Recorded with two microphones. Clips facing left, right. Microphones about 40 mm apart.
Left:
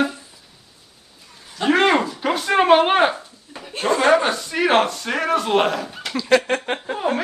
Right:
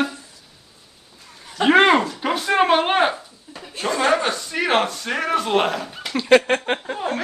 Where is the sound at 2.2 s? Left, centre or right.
Centre.